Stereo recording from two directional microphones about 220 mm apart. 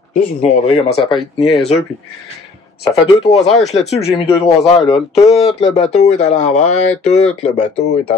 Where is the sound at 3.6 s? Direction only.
30° left (ahead or behind).